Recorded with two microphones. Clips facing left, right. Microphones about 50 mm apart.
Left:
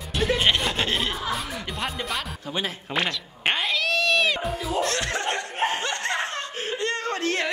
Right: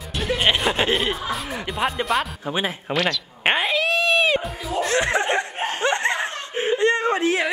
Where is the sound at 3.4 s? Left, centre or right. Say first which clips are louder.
Right 4 dB; right.